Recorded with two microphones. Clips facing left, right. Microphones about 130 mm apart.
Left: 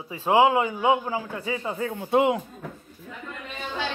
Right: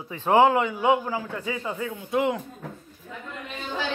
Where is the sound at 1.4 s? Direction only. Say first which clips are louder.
Left 1 dB; 30° left (ahead or behind).